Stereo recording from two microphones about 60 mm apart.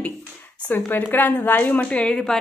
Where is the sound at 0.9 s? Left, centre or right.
Left.